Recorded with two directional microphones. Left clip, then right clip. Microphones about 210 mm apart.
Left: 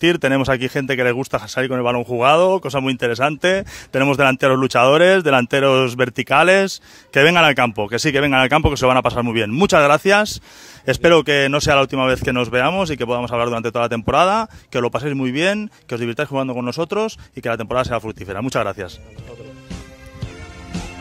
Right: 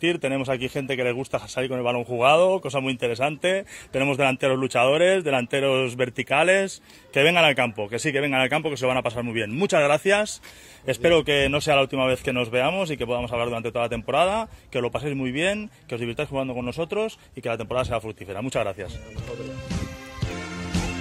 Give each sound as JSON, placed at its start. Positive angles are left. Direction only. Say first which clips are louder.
{"t": 0.0, "sound": "a man's voice", "louder": "left 8 dB", "side_deg": 40}
{"t": 20.7, "sound": "music", "louder": "right 1 dB", "side_deg": -5}